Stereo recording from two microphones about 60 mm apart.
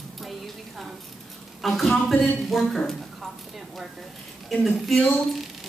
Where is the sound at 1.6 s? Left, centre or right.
Centre.